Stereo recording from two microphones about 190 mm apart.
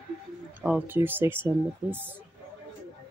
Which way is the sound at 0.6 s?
10° right (ahead or behind).